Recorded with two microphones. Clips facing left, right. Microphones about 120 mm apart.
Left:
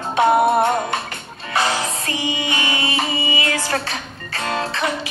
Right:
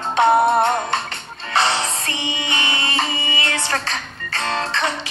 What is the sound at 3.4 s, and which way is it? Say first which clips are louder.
Music: left 2 dB; 25° right (ahead or behind).